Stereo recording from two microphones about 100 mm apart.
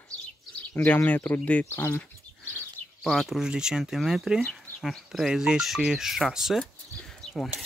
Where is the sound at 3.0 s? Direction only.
Centre (ahead or behind).